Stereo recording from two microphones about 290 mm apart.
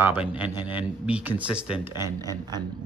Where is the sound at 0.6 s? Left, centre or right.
Centre.